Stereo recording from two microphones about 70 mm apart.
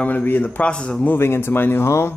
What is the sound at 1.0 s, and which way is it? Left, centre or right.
Speech, left.